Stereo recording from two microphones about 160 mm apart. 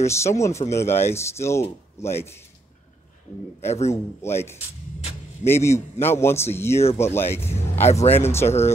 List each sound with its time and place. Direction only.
0.0 s speech: 15° left (ahead or behind)
3.9 s speech: 15° left (ahead or behind)
7.8 s speech: 45° left (ahead or behind)
8.1 s speech: 15° left (ahead or behind)